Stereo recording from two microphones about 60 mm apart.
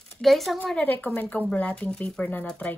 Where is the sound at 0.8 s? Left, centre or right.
Left.